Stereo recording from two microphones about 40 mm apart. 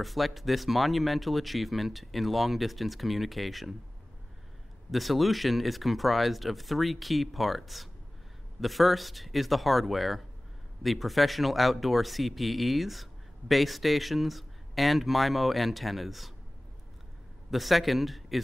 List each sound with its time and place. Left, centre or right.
0.0 s speech: centre
4.9 s speech: centre
17.5 s speech: centre